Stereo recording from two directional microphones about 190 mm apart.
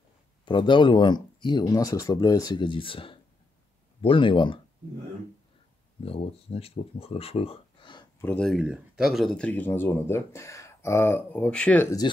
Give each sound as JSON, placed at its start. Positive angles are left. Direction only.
{"t": 0.5, "sound": "speech", "side_deg": 25}
{"t": 6.0, "sound": "speech", "side_deg": 30}
{"t": 8.2, "sound": "speech", "side_deg": 5}